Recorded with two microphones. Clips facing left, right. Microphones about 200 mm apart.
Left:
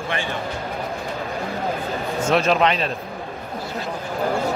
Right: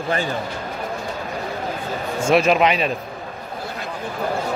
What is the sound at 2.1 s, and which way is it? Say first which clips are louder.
Speech: right 3 dB; 10° right (ahead or behind).